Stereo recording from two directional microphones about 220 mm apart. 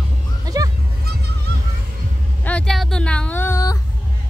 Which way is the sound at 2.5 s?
5° left (ahead or behind).